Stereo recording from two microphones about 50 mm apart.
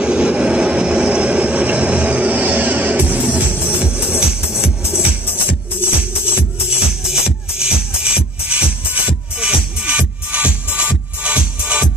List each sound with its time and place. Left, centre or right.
0.0 s vehicle: right
3.8 s music: right
5.8 s music: left
7.1 s music: centre